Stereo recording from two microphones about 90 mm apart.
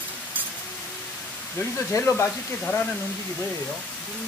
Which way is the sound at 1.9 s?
30° left (ahead or behind).